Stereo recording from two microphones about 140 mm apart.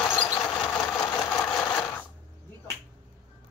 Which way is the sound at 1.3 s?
10° left (ahead or behind).